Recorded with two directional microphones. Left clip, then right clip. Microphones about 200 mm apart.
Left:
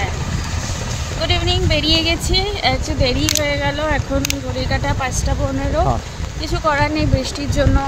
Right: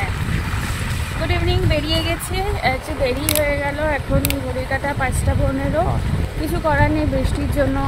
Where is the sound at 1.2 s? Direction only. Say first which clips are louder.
Left 4 dB; 10° left (ahead or behind).